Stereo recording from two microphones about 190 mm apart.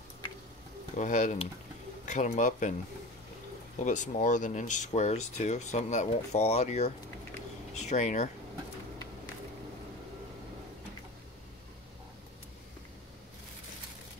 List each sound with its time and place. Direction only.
0.9 s speech: 40° left (ahead or behind)
3.7 s speech: 40° left (ahead or behind)